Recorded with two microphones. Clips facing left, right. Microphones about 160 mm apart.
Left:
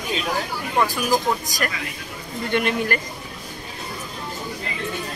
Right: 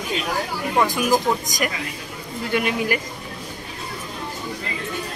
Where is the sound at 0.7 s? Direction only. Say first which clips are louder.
Right 1 dB; 15° right (ahead or behind).